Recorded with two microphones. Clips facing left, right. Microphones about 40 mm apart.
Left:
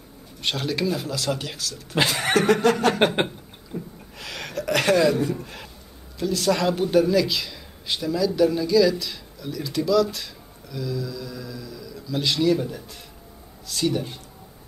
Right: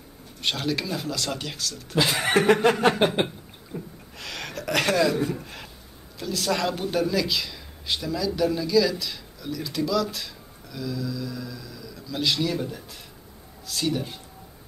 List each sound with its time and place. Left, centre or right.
0.4 s speech: centre
2.3 s chuckle: right
3.7 s gasp: centre
4.2 s a sound: centre
5.3 s speech: centre